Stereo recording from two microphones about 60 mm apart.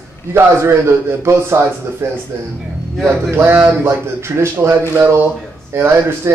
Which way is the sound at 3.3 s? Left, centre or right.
Right.